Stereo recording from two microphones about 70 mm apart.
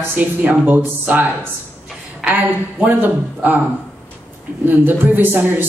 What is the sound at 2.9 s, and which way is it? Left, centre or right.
Speech, right.